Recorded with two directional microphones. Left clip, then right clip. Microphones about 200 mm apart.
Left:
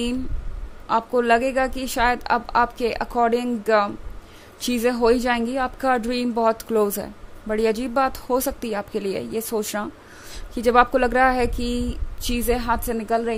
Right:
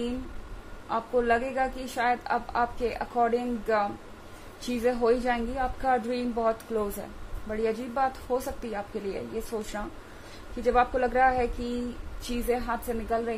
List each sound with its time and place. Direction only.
0.8 s speech: 50° left (ahead or behind)